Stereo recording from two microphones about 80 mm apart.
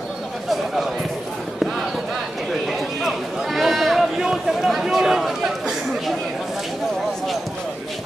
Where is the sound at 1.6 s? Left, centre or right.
Centre.